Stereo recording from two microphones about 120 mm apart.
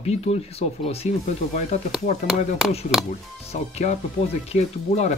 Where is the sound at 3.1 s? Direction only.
75° left (ahead or behind).